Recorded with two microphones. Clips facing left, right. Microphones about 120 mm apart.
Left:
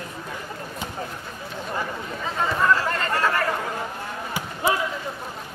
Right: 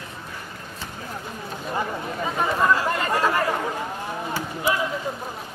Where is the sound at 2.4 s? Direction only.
15° right (ahead or behind).